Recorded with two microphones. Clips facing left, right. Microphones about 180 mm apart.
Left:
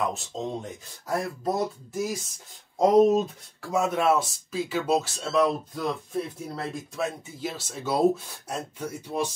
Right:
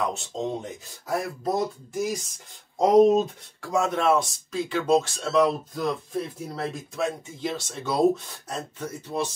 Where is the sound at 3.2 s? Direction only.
5° left (ahead or behind).